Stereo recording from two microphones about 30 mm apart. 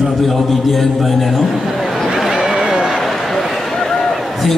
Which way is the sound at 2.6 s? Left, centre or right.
Right.